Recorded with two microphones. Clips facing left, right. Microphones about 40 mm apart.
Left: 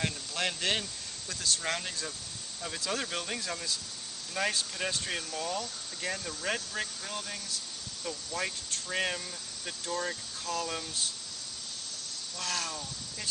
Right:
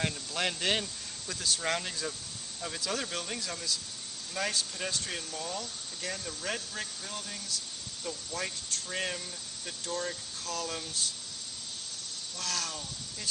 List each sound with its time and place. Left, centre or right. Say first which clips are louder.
0.0 s speech: right 1 dB; centre
12.4 s speech: left 1 dB; centre